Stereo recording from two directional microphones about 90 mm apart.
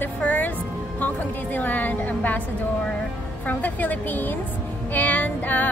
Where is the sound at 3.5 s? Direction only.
20° left (ahead or behind).